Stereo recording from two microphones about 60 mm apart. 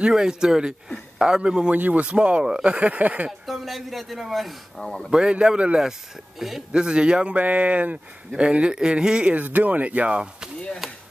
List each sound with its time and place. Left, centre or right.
0.0 s speech: centre
3.3 s speech: centre
5.1 s speech: centre
9.3 s speech: right